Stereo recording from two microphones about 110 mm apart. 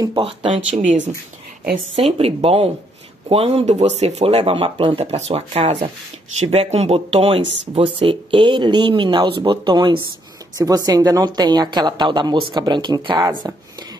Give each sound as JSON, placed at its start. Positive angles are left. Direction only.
{"t": 0.5, "sound": "speech", "side_deg": -70}
{"t": 2.0, "sound": "speech", "side_deg": -65}
{"t": 5.0, "sound": "speech", "side_deg": -70}
{"t": 10.6, "sound": "a woman's voice", "side_deg": -35}